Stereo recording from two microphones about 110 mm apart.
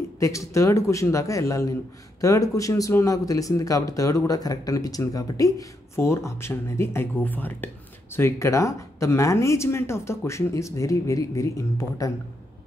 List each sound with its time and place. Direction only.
0.2 s speech: 30° left (ahead or behind)